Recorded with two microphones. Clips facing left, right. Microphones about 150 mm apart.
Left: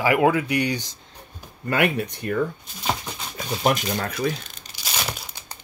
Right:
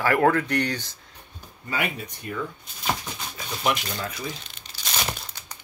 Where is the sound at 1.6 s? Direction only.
65° left (ahead or behind).